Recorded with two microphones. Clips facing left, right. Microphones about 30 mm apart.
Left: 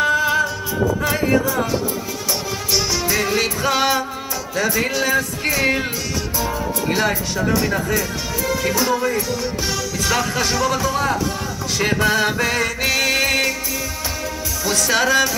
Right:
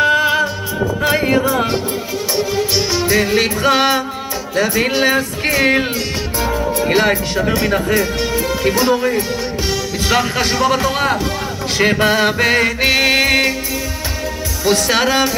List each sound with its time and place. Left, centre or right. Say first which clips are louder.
0.0 s music: right 4 dB; right
1.0 s music: right 7 dB; right
2.3 s music: right 6 dB; right
6.5 s speech: right 8 dB; right
9.7 s music: right 5 dB; right
10.9 s speech: right 3 dB; right
11.8 s music: right 4 dB; right
14.6 s music: right 4 dB; right